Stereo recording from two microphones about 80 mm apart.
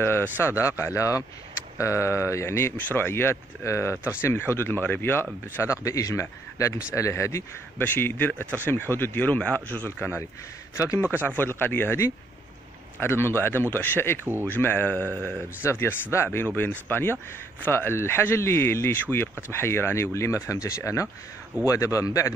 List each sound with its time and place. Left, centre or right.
0.4 s speech: left
5.6 s speech: left
7.8 s speech: left
11.2 s speech: left
14.2 s speech: right
14.5 s a man's voice: left